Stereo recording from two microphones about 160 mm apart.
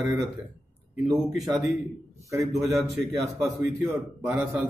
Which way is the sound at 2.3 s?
20° right (ahead or behind).